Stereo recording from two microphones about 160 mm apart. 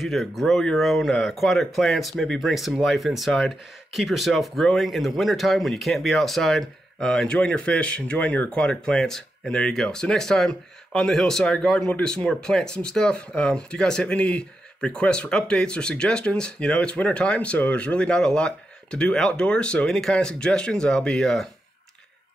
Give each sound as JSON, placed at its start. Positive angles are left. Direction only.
{"t": 0.0, "sound": "speech", "side_deg": 0}